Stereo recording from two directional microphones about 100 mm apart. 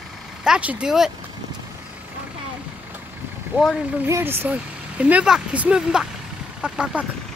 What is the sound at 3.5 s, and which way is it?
Speech, 20° right (ahead or behind).